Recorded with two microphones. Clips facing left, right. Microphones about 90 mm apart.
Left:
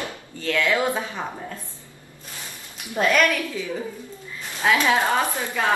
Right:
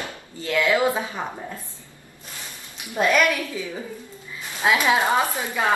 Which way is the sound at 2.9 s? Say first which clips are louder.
Even; 15° right (ahead or behind).